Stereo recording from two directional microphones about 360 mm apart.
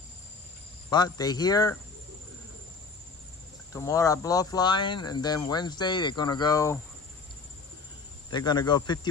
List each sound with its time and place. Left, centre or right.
0.8 s speech: centre
3.7 s speech: centre
8.3 s speech: centre